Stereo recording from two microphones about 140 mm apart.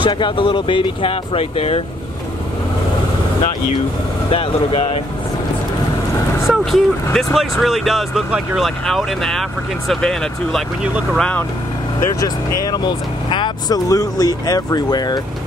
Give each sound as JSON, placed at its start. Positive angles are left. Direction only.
{"t": 0.0, "sound": "speech", "side_deg": 35}
{"t": 4.3, "sound": "speech", "side_deg": 40}
{"t": 6.4, "sound": "speech", "side_deg": 0}
{"t": 12.2, "sound": "speech", "side_deg": 25}